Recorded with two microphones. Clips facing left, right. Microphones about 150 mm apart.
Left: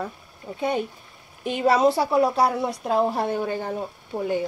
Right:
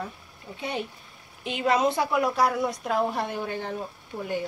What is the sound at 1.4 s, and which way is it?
Speech, 45° left (ahead or behind).